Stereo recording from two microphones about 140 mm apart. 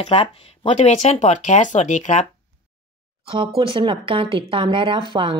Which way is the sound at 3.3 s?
40° right (ahead or behind).